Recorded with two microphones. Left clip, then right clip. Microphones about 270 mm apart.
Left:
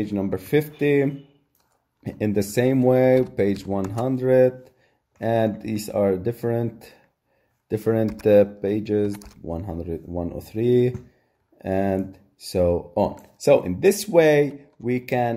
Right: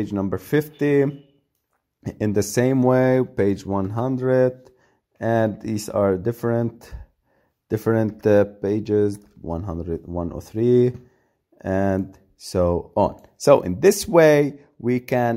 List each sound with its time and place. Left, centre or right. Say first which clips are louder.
0.0 s speech: right 1 dB; right